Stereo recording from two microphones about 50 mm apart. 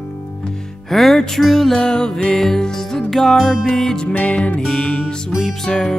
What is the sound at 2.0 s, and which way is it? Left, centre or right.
Music, centre.